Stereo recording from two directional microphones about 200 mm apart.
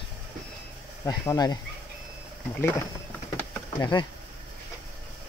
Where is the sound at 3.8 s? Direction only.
20° left (ahead or behind).